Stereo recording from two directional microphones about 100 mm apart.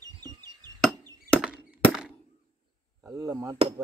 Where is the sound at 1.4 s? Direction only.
10° right (ahead or behind).